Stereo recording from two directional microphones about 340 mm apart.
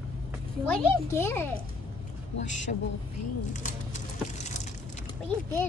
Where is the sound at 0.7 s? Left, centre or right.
Centre.